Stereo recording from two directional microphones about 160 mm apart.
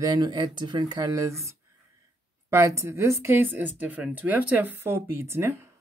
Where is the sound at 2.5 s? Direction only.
20° right (ahead or behind).